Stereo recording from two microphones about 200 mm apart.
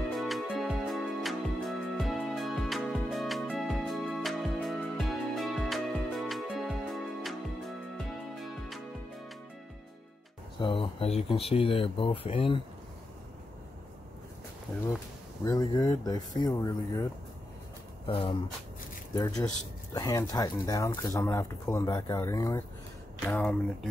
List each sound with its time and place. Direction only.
0.2 s music: centre (ahead or behind)
10.6 s speech: 25° left (ahead or behind)
15.4 s speech: 15° left (ahead or behind)